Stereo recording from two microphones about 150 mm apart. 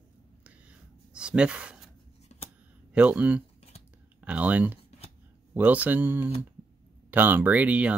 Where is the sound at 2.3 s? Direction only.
45° left (ahead or behind).